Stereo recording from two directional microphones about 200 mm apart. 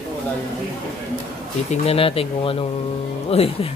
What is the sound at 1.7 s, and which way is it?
Speech, 30° left (ahead or behind).